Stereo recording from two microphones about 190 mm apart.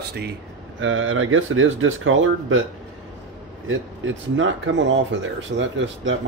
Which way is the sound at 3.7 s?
90° right.